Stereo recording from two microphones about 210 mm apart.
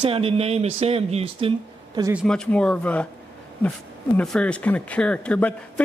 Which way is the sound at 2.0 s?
15° right (ahead or behind).